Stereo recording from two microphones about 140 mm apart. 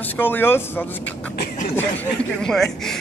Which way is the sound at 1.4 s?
80° left.